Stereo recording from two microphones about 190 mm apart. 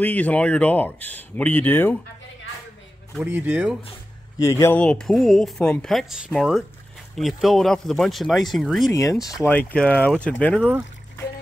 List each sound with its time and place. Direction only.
0.0 s speech: 10° left (ahead or behind)
3.3 s speech: 10° right (ahead or behind)
4.4 s speech: 15° left (ahead or behind)
8.9 s speech: 15° left (ahead or behind)